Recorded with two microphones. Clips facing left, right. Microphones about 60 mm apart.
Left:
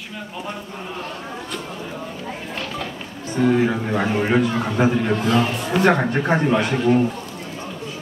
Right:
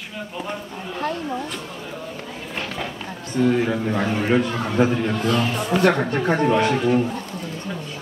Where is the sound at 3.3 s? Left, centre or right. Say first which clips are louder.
Left 1 dB; centre.